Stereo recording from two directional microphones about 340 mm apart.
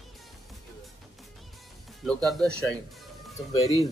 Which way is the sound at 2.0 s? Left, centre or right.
Centre.